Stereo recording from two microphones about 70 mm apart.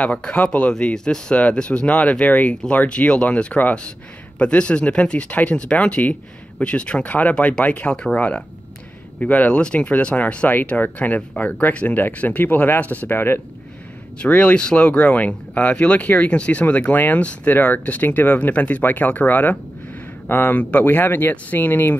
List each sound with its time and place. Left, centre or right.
0.0 s speech: centre; by 13.4 s left
14.1 s speech: centre